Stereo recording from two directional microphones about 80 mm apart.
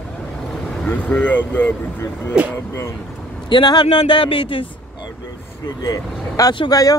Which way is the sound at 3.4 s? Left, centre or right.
Left.